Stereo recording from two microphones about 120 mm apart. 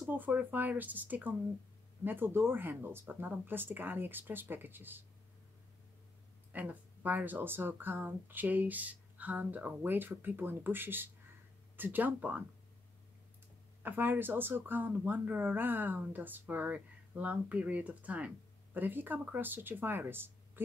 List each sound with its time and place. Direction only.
0.0 s speech: 15° right (ahead or behind)
6.5 s speech: 15° right (ahead or behind)
13.8 s speech: 15° right (ahead or behind)